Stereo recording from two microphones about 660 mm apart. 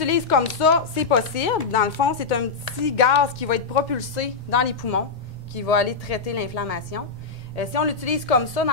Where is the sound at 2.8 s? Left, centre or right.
Left.